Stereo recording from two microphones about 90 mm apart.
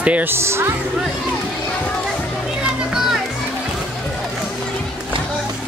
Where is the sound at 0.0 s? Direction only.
20° right (ahead or behind).